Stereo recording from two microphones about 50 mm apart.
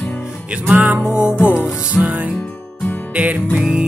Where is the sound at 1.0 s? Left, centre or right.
Centre.